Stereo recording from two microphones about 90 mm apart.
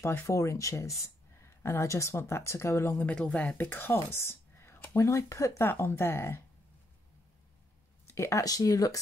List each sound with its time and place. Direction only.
0.0 s speech: 20° left (ahead or behind)
0.3 s speech: 35° left (ahead or behind)
3.1 s speech: 15° left (ahead or behind)
8.1 s speech: 35° left (ahead or behind)